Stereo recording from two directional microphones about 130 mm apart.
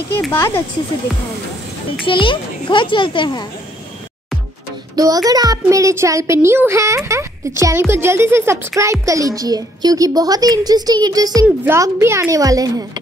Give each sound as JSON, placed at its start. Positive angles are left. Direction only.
{"t": 0.3, "sound": "speech", "side_deg": 20}
{"t": 2.0, "sound": "a child's voice", "side_deg": 40}
{"t": 4.9, "sound": "a child's voice", "side_deg": -30}
{"t": 11.4, "sound": "a child's voice", "side_deg": -20}